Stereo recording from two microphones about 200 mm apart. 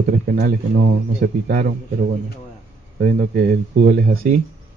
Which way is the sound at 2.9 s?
55° right (ahead or behind).